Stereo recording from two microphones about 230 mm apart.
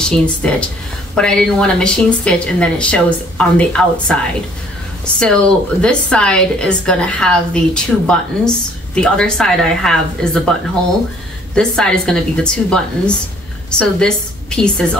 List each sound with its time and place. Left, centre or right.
0.0 s a woman's voice: centre
11.5 s a woman's voice: centre